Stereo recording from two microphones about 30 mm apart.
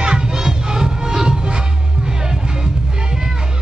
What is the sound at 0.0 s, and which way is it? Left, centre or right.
Music, right.